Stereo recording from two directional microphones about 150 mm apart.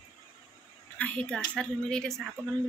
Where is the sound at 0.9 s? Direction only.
10° left (ahead or behind).